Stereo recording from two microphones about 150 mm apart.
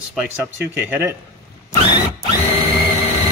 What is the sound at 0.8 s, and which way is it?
Speech, 15° right (ahead or behind).